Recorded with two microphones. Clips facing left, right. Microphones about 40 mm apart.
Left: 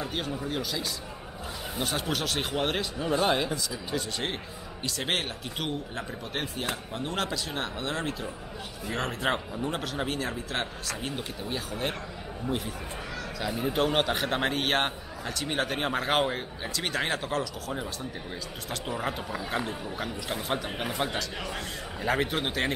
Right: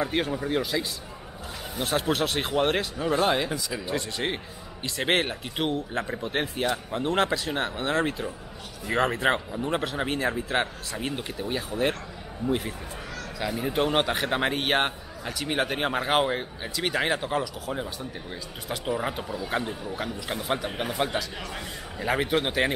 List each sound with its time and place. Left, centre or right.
0.0 s a man's voice: centre
4.8 s a man's voice: right
6.6 s a man's voice: centre
7.2 s a man's voice: right
13.4 s a man's voice: centre